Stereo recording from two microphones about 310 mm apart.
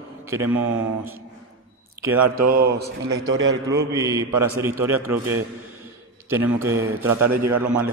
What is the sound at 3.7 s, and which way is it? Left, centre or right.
A man's voice, centre.